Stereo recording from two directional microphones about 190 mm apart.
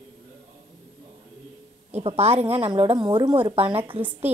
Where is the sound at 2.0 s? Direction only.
35° right (ahead or behind).